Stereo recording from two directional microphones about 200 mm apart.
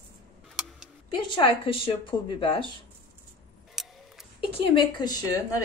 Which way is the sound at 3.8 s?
Centre (ahead or behind).